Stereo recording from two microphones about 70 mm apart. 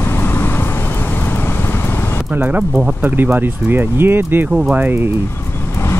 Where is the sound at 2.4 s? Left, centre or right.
Right.